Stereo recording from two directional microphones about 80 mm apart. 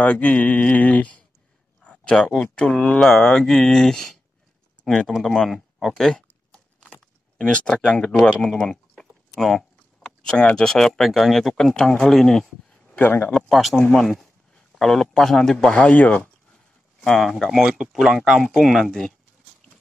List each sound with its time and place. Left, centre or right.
0.0 s a man's voice: centre
3.0 s speech: centre
6.2 s a sound: centre
8.5 s speech: centre
12.9 s speech: left
13.5 s a man's voice: centre
16.5 s speech: centre